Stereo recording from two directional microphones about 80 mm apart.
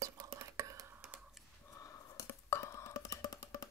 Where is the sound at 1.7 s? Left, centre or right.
Left.